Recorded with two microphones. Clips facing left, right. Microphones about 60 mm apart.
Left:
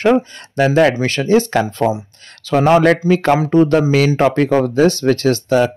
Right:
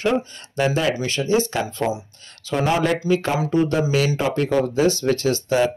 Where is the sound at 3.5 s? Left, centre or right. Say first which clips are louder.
Left 5 dB; left.